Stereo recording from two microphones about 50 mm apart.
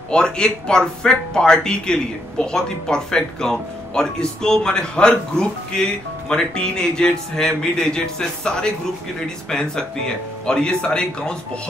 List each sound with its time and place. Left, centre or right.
0.1 s speech: centre